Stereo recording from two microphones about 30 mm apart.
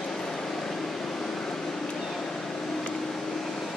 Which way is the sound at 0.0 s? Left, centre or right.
Centre.